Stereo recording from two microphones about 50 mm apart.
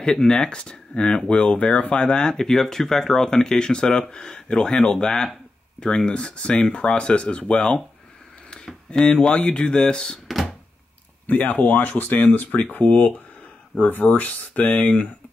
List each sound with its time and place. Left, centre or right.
0.0 s speech: centre
8.9 s speech: left
10.2 s a sound: centre
11.2 s speech: left